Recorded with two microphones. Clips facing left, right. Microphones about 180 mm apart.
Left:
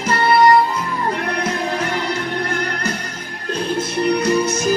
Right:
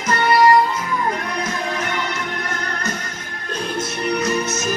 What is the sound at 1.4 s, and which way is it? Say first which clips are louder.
Music: left 3 dB; 30° left (ahead or behind).